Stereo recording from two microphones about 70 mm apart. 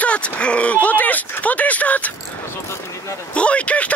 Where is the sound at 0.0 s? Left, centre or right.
Centre.